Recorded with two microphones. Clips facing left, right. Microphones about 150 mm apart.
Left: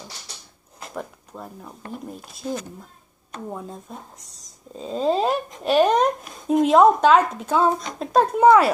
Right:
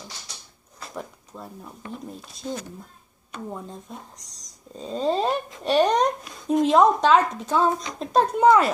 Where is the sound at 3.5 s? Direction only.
5° left (ahead or behind).